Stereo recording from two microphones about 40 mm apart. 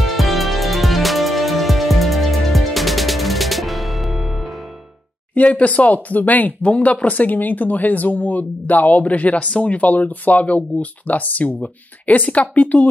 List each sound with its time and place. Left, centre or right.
0.0 s music: centre
5.3 s speech: left